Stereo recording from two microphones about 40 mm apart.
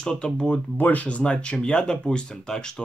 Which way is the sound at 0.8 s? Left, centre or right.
Left.